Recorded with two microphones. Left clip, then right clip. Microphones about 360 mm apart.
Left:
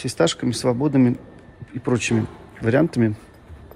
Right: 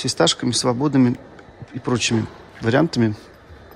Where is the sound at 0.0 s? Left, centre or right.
Centre.